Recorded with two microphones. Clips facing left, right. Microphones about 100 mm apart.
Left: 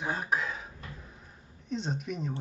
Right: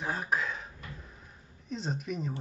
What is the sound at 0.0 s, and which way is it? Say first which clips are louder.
Throat clearing: left 1 dB; centre (ahead or behind).